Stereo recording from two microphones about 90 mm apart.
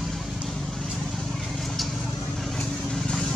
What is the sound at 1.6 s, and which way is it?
Vehicle, centre (ahead or behind).